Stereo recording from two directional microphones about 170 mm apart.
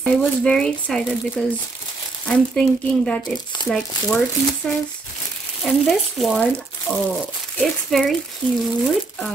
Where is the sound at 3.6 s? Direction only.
25° left (ahead or behind).